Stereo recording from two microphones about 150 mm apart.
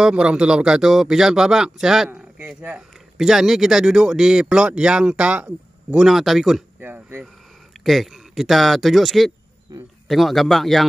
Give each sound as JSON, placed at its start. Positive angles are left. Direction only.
{"t": 0.0, "sound": "speech", "side_deg": -5}
{"t": 6.8, "sound": "speech", "side_deg": -15}
{"t": 7.8, "sound": "speech", "side_deg": 0}
{"t": 9.7, "sound": "speech", "side_deg": -25}
{"t": 10.0, "sound": "speech", "side_deg": 0}